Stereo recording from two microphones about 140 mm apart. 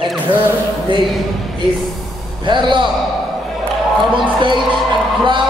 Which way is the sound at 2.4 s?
35° right (ahead or behind).